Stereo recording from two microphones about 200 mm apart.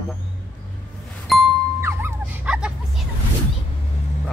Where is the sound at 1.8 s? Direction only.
10° right (ahead or behind).